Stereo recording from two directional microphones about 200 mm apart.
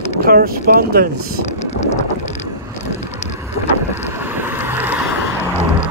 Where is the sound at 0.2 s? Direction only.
50° right (ahead or behind).